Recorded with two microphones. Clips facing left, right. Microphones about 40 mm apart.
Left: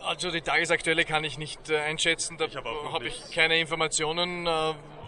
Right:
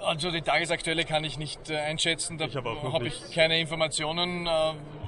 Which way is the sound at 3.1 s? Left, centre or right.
Left.